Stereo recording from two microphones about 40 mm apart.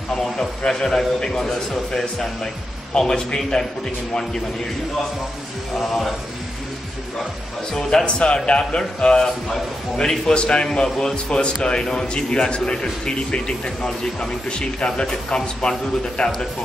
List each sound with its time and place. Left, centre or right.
0.7 s a man's voice: centre
5.8 s speech: centre
8.0 s a man's voice: left